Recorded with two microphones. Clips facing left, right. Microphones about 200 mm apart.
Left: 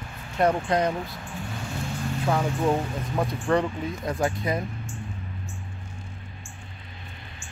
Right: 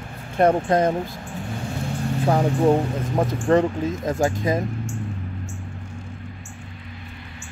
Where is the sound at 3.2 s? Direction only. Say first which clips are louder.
Right 5 dB; 45° right (ahead or behind).